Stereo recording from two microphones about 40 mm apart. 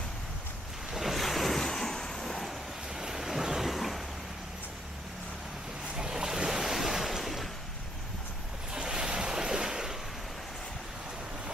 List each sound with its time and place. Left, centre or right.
0.9 s waves: centre
1.7 s vehicle: centre
3.0 s vehicle: centre
5.9 s waves: centre
8.7 s a sound: centre